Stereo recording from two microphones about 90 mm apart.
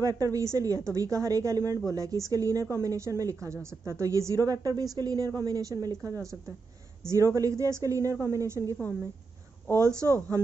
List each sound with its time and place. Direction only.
0.0 s a woman's voice: 40° right (ahead or behind)
9.8 s a woman's voice: 35° right (ahead or behind)